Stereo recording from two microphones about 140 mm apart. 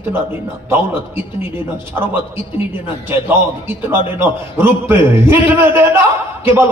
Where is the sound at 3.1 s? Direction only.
15° right (ahead or behind).